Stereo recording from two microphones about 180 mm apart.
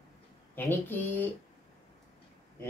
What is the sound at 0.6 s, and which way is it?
Speech, 10° left (ahead or behind).